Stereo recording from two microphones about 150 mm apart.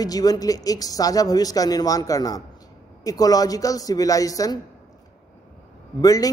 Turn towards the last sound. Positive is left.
turn(degrees=25)  # may be behind; listen again after turning